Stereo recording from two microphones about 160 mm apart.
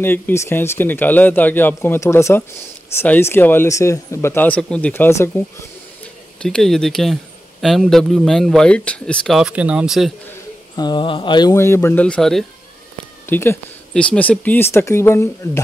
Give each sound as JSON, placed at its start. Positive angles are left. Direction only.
{"t": 0.0, "sound": "speech", "side_deg": 15}
{"t": 6.4, "sound": "speech", "side_deg": 5}
{"t": 10.8, "sound": "mantra", "side_deg": 30}
{"t": 11.5, "sound": "speech", "side_deg": 15}
{"t": 13.3, "sound": "speech", "side_deg": 15}